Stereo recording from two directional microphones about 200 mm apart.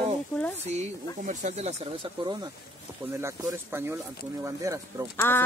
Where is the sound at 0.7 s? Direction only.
35° right (ahead or behind).